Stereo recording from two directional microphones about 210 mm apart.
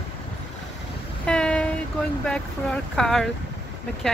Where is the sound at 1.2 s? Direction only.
5° left (ahead or behind).